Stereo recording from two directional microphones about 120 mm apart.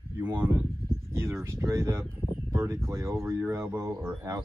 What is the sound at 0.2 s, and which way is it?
Speech, 15° right (ahead or behind).